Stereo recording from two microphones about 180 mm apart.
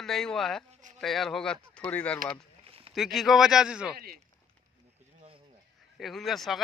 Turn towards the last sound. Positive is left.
turn(degrees=0)  # may be behind; listen again after turning